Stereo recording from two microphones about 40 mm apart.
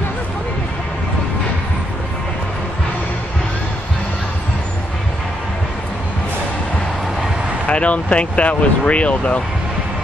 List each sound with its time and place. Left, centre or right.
7.6 s speech: left